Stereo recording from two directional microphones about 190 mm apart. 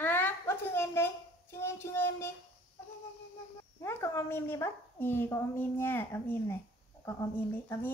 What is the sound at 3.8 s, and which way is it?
A child's voice, 15° left (ahead or behind).